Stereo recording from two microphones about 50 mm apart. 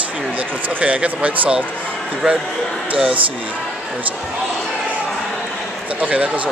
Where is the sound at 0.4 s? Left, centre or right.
Right.